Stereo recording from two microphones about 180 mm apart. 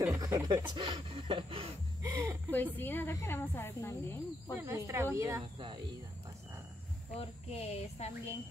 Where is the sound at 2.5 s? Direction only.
10° left (ahead or behind).